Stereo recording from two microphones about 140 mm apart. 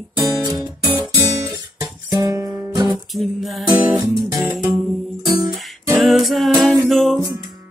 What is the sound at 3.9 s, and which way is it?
Music, centre (ahead or behind).